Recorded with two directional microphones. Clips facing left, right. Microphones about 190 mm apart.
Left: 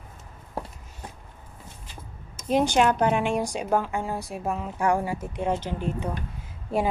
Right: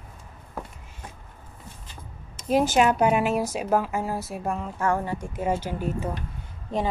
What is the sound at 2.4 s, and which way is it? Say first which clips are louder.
A woman's voice: right 1 dB; 5° right (ahead or behind).